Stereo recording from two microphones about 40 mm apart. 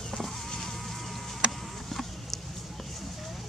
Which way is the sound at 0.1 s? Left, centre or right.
Centre.